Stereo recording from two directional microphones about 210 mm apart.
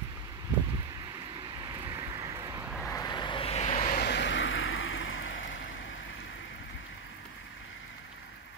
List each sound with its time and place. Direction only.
1.8 s vehicle: 15° right (ahead or behind)
2.9 s vehicle: 20° left (ahead or behind)
3.9 s vehicle: 50° left (ahead or behind)